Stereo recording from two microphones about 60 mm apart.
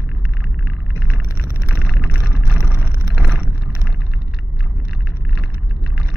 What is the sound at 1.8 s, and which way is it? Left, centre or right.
Vehicle, centre.